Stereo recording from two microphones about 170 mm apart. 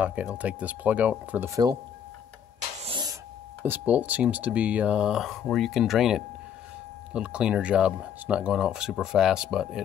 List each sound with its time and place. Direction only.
0.0 s speech: 10° right (ahead or behind)
2.8 s a sound: 30° right (ahead or behind)
3.6 s speech: 10° right (ahead or behind)